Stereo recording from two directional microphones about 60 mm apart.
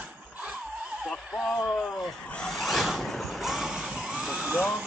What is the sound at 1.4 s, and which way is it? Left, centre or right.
Speech, centre.